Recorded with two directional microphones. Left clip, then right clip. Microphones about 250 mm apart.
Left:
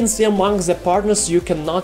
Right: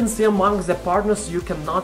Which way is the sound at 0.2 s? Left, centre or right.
Left.